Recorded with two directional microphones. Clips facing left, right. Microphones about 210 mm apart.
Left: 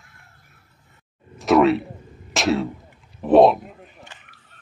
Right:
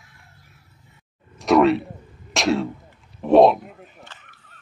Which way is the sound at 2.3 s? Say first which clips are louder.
Even; centre (ahead or behind).